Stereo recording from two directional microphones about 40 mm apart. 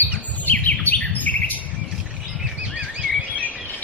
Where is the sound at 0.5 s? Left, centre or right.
Left.